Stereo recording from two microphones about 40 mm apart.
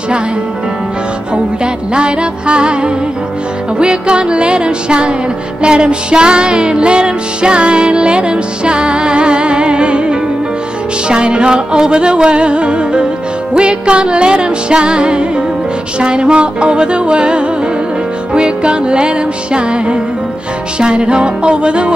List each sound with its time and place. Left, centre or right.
1.3 s music: right